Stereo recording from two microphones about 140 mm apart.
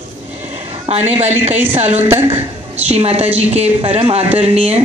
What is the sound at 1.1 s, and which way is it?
Speech, 50° right (ahead or behind).